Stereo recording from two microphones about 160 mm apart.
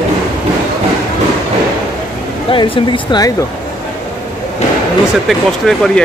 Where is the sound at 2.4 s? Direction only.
35° left (ahead or behind).